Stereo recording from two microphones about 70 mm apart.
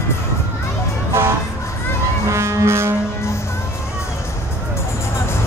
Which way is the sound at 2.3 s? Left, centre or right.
Right.